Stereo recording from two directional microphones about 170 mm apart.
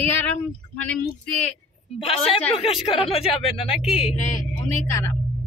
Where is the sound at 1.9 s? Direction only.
35° left (ahead or behind).